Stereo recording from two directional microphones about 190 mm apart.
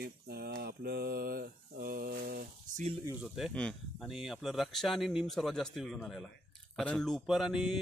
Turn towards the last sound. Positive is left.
turn(degrees=0)  # may be behind; listen again after turning